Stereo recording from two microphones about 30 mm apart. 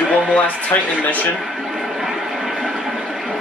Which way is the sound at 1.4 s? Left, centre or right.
Centre.